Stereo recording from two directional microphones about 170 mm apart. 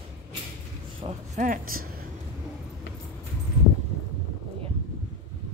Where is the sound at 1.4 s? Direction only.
50° right (ahead or behind).